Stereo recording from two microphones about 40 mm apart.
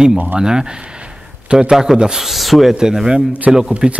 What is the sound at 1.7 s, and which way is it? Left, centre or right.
Speech, centre.